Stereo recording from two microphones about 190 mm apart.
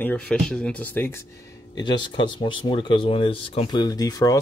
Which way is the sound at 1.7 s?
25° left (ahead or behind).